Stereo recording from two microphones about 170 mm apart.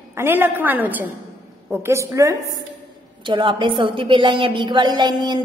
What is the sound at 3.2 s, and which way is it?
A woman's voice, 30° right (ahead or behind).